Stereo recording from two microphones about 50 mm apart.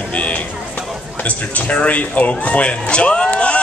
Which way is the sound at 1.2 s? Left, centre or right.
Left.